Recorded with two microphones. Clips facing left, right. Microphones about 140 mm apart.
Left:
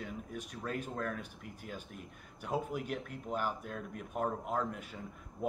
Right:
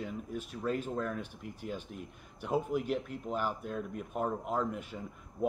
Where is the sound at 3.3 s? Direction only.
10° right (ahead or behind).